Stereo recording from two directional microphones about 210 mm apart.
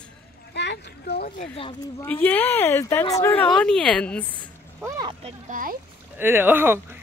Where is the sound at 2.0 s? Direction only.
10° left (ahead or behind).